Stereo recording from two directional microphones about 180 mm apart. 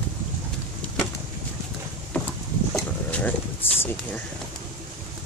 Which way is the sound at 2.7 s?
10° left (ahead or behind).